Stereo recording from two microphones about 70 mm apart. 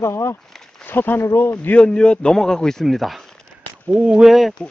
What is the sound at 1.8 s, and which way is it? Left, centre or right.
Speech, centre.